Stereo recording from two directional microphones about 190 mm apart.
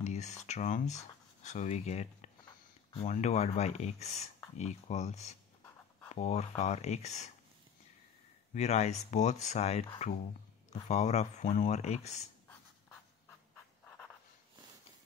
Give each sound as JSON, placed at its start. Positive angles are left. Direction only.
{"t": 0.0, "sound": "speech", "side_deg": 35}
{"t": 8.5, "sound": "speech", "side_deg": 35}
{"t": 13.8, "sound": "writing", "side_deg": 5}